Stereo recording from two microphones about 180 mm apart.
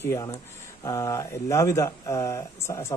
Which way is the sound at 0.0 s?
15° left (ahead or behind).